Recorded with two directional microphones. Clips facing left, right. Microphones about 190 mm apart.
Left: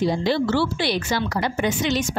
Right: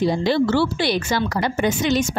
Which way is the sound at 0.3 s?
45° right (ahead or behind).